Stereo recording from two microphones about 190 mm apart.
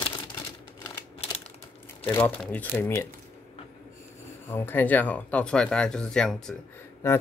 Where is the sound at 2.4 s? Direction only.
5° left (ahead or behind).